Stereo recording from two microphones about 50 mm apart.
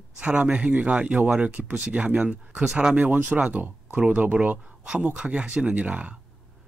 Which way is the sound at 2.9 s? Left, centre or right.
Right.